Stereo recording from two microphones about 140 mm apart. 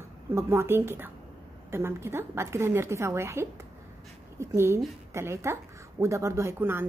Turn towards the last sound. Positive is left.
turn(degrees=-15)  # may be behind; listen again after turning